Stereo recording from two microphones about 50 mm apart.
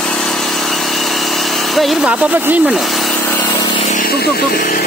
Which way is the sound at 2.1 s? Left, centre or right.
Right.